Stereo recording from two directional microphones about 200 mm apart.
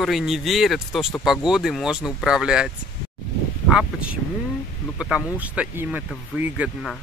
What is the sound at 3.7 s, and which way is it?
Speech, 5° right (ahead or behind).